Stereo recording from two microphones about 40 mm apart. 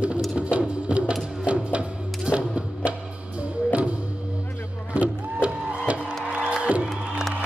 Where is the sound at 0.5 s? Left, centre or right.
Right.